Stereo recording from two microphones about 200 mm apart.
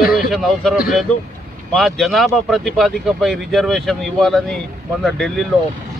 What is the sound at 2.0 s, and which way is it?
Speech, centre (ahead or behind).